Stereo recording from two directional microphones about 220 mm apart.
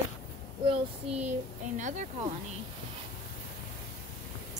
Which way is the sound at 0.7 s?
30° right (ahead or behind).